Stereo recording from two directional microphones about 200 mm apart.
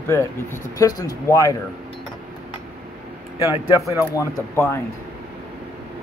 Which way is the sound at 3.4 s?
15° left (ahead or behind).